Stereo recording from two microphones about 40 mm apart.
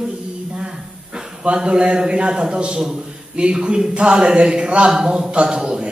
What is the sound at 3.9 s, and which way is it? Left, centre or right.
A woman's voice, right.